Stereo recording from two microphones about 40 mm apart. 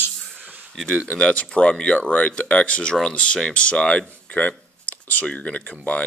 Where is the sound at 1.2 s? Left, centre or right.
Left.